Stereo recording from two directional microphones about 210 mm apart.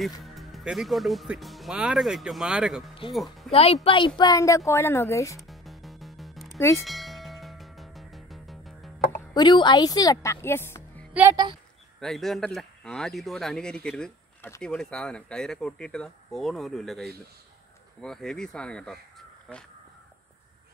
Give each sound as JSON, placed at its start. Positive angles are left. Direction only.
{"t": 0.2, "sound": "speech", "side_deg": 0}
{"t": 3.5, "sound": "a woman's voice", "side_deg": 30}
{"t": 5.5, "sound": "music", "side_deg": 0}
{"t": 9.3, "sound": "speech", "side_deg": 20}
{"t": 11.1, "sound": "speech", "side_deg": -10}
{"t": 12.0, "sound": "speech", "side_deg": 0}